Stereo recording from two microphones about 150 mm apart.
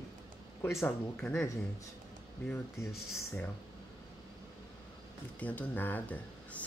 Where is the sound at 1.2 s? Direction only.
5° left (ahead or behind).